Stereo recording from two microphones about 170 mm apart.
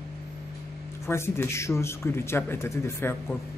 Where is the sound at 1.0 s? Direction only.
15° left (ahead or behind).